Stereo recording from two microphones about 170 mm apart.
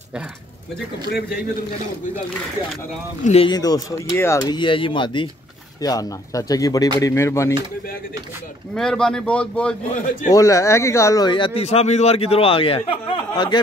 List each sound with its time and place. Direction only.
3.3 s speech: 35° left (ahead or behind)
3.5 s speech: 20° left (ahead or behind)
8.7 s speech: 5° left (ahead or behind)
10.3 s speech: 20° left (ahead or behind)